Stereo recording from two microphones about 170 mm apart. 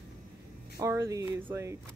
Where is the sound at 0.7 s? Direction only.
15° right (ahead or behind).